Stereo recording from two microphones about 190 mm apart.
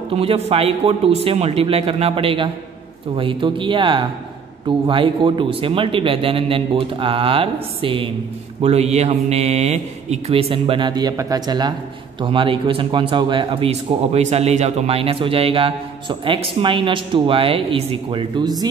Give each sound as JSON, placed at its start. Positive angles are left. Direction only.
{"t": 0.1, "sound": "a man's voice", "side_deg": -30}